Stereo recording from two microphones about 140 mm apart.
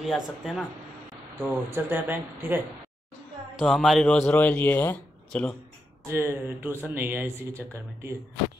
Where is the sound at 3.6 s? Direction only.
Centre (ahead or behind).